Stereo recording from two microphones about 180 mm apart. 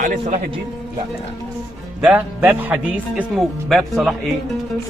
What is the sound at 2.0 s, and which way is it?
Speech, 10° right (ahead or behind).